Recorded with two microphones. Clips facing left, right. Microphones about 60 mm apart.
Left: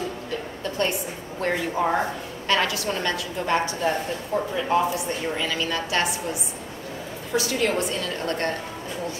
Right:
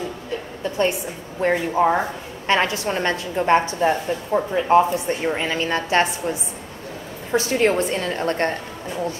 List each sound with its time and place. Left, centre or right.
1.4 s speech: centre
2.4 s a woman's voice: right
7.3 s a woman's voice: right